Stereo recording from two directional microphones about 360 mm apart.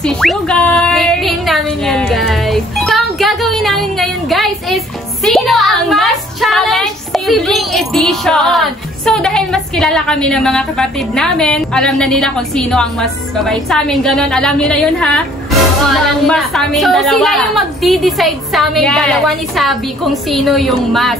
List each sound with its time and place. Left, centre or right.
0.0 s a woman's voice: centre